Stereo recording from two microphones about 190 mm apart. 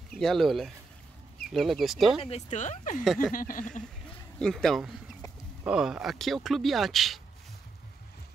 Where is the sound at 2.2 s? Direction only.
35° left (ahead or behind).